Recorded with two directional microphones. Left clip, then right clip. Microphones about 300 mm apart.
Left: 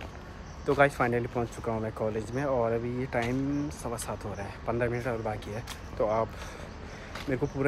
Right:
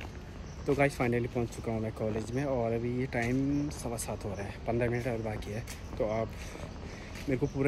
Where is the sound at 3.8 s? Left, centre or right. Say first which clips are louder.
Left 2 dB; centre.